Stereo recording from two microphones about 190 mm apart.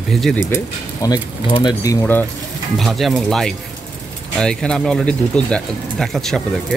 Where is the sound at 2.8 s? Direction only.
Centre (ahead or behind).